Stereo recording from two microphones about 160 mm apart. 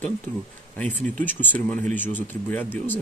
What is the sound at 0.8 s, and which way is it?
Speech, 10° left (ahead or behind).